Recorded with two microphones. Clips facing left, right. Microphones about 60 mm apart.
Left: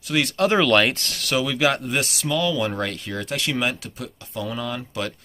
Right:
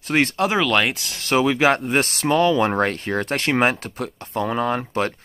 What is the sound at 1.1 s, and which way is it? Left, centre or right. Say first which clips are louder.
Speech: right 5 dB; right.